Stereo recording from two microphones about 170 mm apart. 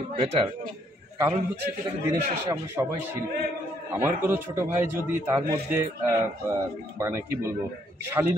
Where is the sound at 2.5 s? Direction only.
15° right (ahead or behind).